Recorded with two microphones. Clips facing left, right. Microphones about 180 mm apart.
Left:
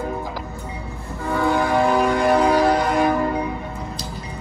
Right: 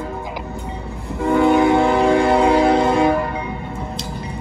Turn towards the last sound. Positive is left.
turn(degrees=-25)  # may be behind; listen again after turning